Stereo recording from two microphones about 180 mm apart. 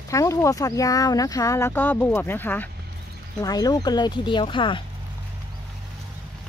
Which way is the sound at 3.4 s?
20° left (ahead or behind).